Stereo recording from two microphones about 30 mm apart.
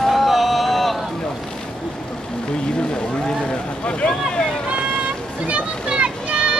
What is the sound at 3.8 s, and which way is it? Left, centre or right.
Vehicle, left.